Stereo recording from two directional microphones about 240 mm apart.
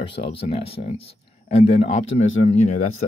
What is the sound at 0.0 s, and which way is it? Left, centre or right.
Speech, left.